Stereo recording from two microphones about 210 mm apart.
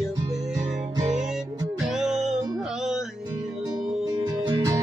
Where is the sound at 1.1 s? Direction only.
Centre (ahead or behind).